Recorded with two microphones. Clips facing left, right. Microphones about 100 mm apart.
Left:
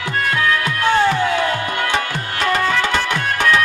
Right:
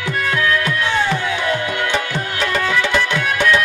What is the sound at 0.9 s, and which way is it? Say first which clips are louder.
Music: left 7 dB; 45° left (ahead or behind).